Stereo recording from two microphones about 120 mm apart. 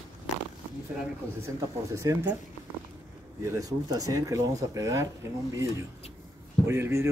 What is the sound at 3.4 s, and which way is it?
Speech, 30° right (ahead or behind).